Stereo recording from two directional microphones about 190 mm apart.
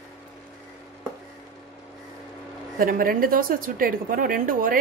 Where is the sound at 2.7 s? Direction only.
50° right (ahead or behind).